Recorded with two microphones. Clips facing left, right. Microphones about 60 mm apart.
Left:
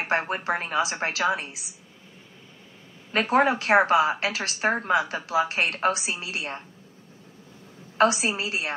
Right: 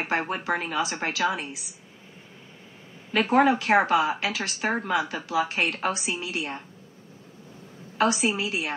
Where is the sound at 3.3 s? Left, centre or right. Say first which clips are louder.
Even; left.